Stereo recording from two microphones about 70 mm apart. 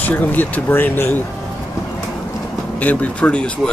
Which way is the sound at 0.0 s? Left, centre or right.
Left.